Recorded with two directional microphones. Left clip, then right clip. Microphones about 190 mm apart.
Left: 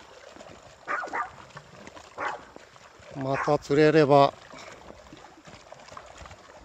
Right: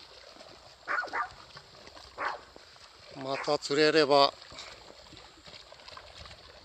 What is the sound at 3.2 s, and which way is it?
Speech, 5° left (ahead or behind).